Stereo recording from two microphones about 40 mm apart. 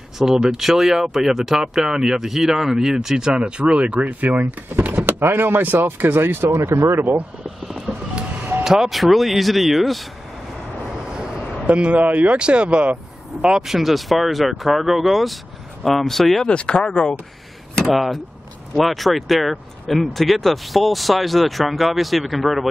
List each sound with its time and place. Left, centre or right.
0.2 s speech: centre; by 7.0 s right
7.7 s vehicle: right
8.6 s speech: centre
11.1 s a sound: right
12.1 s speech: right
12.4 s speech: right
13.7 s speech: centre
16.4 s speech: left
17.9 s speech: centre